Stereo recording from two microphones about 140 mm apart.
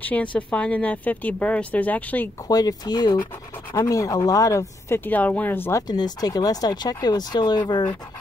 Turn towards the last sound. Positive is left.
turn(degrees=30)  # may be behind; listen again after turning